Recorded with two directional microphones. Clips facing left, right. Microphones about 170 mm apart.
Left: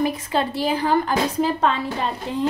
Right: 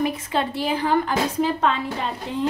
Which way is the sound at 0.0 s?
35° left (ahead or behind).